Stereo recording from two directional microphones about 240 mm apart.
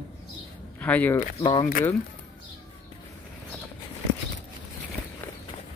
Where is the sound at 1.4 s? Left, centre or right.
Centre.